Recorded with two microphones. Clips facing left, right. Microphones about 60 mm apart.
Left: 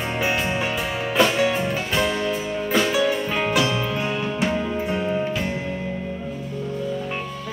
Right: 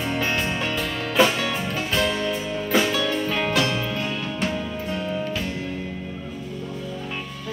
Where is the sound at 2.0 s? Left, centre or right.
Centre; by 5.5 s left.